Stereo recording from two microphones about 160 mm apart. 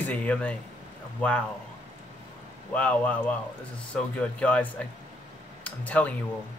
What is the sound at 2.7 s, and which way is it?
Speech, 10° left (ahead or behind).